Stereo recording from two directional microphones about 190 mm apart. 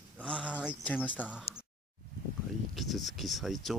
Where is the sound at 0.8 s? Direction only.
10° left (ahead or behind).